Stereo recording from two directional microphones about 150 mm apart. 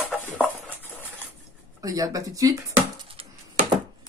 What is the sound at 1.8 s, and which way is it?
Speech, 25° right (ahead or behind).